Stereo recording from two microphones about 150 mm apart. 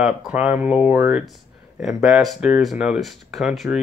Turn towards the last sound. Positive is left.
turn(degrees=0)  # may be behind; listen again after turning